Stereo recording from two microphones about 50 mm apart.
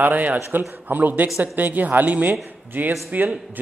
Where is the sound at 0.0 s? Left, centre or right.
Right.